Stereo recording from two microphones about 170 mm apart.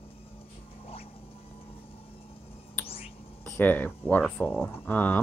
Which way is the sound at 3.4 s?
10° left (ahead or behind).